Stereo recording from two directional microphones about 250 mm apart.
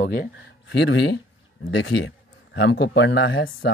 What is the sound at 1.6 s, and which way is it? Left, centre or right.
Speech, left.